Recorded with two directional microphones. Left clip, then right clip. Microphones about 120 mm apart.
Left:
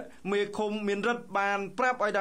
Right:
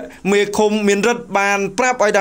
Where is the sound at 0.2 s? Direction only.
35° right (ahead or behind).